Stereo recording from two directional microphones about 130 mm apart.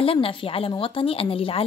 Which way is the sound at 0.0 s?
45° left (ahead or behind).